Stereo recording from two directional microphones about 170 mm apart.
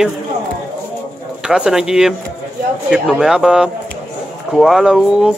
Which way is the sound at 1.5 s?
5° right (ahead or behind).